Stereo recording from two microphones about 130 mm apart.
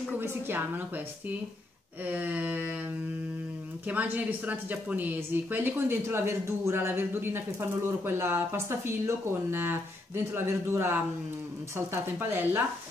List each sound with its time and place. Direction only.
0.2 s a woman's voice: 15° right (ahead or behind)
2.0 s a woman's voice: 15° right (ahead or behind)
3.8 s a woman's voice: 15° right (ahead or behind)